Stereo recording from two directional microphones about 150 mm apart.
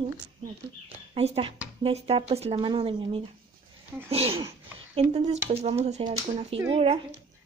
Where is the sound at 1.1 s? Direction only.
40° right (ahead or behind).